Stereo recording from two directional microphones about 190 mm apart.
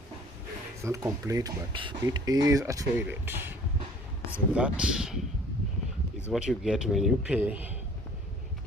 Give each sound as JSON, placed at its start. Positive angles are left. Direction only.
{"t": 0.8, "sound": "a man's voice", "side_deg": -15}
{"t": 6.3, "sound": "a man's voice", "side_deg": -5}